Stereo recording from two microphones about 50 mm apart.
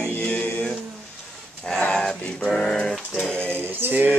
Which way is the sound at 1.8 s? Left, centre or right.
Centre.